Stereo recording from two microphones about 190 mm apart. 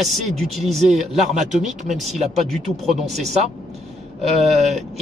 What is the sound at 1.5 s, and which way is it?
Speech, 40° right (ahead or behind).